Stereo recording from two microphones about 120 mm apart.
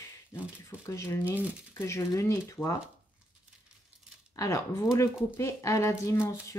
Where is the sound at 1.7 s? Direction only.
25° left (ahead or behind).